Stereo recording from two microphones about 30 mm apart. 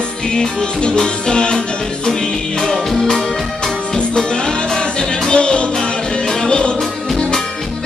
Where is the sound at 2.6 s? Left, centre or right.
Centre; by 6.7 s left.